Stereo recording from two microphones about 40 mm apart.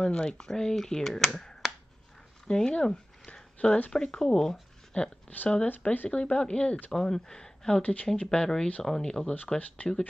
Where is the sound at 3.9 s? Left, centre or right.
Left.